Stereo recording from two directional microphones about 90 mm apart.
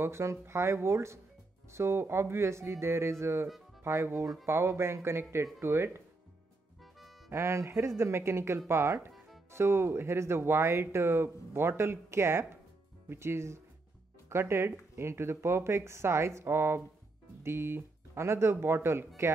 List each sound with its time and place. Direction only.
0.0 s speech: 30° right (ahead or behind)
7.2 s speech: 30° right (ahead or behind)